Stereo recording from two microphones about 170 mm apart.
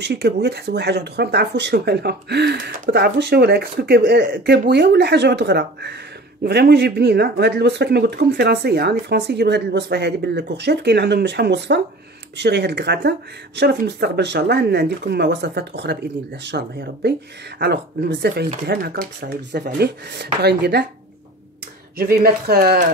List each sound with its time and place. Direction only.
0.0 s speech: 80° right
21.9 s speech: 65° right (ahead or behind)